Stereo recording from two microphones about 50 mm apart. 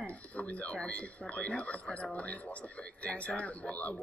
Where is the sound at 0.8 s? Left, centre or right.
Left.